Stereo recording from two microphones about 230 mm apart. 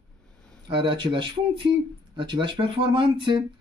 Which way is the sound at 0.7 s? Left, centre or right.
Right.